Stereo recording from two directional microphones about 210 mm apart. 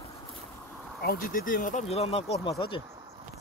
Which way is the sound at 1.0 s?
45° left (ahead or behind).